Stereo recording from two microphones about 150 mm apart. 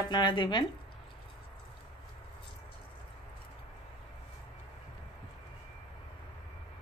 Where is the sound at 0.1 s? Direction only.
30° left (ahead or behind).